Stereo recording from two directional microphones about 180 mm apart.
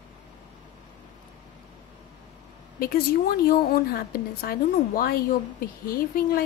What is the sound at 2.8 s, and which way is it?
A woman's voice, 55° left (ahead or behind).